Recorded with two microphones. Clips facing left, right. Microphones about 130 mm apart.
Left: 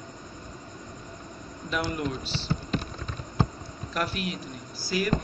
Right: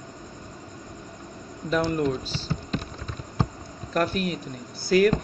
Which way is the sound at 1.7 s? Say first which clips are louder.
Right 6 dB; 30° right (ahead or behind).